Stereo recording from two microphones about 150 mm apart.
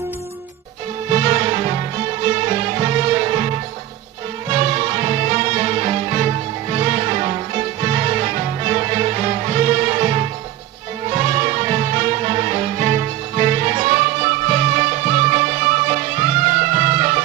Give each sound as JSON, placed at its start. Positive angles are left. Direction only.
{"t": 1.1, "sound": "music", "side_deg": -40}
{"t": 4.5, "sound": "music", "side_deg": -40}